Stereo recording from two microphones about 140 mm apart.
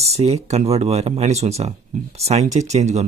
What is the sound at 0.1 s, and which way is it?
Speech, 50° right (ahead or behind).